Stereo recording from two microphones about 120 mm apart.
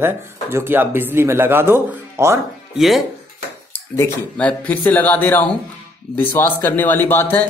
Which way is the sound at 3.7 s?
20° left (ahead or behind).